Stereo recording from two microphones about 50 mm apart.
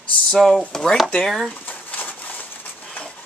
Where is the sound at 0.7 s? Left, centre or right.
Centre.